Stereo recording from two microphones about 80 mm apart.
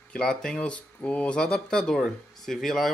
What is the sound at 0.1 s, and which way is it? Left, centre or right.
Speech, centre.